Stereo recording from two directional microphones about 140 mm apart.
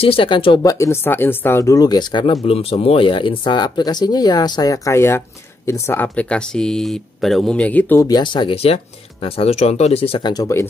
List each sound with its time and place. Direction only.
0.0 s speech: 40° left (ahead or behind)
0.7 s speech: 20° left (ahead or behind)
8.0 s speech: 30° left (ahead or behind)